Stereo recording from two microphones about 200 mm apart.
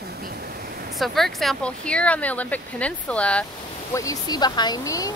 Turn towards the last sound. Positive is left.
turn(degrees=15)  # may be behind; listen again after turning